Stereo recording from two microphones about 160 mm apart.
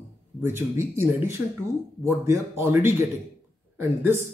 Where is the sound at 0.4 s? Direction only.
15° right (ahead or behind).